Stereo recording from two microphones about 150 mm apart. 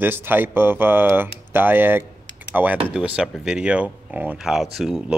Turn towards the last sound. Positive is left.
turn(degrees=0)  # may be behind; listen again after turning